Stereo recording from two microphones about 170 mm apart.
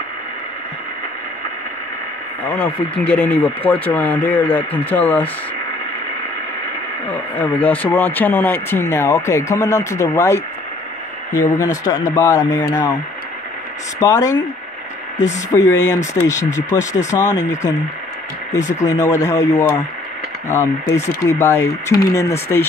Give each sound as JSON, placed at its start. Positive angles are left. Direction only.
{"t": 2.4, "sound": "speech", "side_deg": 10}
{"t": 7.1, "sound": "speech", "side_deg": 10}
{"t": 13.9, "sound": "speech", "side_deg": 20}
{"t": 15.5, "sound": "speech", "side_deg": 20}
{"t": 18.6, "sound": "speech", "side_deg": 45}
{"t": 18.9, "sound": "speech", "side_deg": 20}